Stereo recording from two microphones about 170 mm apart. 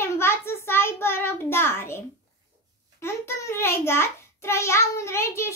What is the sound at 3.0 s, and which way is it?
A child's voice, 15° left (ahead or behind).